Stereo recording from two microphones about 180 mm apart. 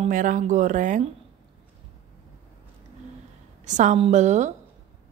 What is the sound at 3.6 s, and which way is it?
Speech, 40° right (ahead or behind).